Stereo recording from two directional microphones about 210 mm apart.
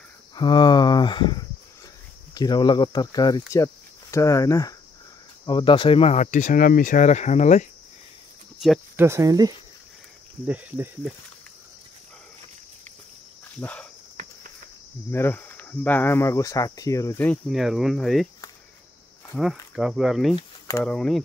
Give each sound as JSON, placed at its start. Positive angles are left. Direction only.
{"t": 0.4, "sound": "speech", "side_deg": 20}
{"t": 8.5, "sound": "cricket", "side_deg": 0}
{"t": 9.0, "sound": "cricket", "side_deg": -15}
{"t": 10.4, "sound": "cricket", "side_deg": -5}
{"t": 13.6, "sound": "speech", "side_deg": 5}
{"t": 15.0, "sound": "speech", "side_deg": 10}
{"t": 19.7, "sound": "speech", "side_deg": -5}